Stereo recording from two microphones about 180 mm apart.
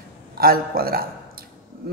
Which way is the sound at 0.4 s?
55° right (ahead or behind).